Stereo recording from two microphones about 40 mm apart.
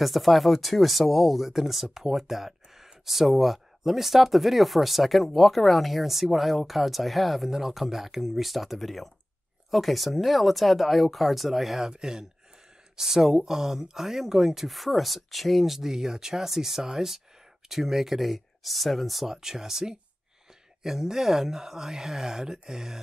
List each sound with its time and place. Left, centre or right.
0.0 s speech: centre
11.9 s speech: centre
19.3 s speech: centre